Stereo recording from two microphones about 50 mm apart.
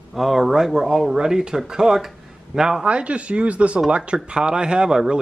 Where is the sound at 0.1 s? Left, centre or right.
Centre.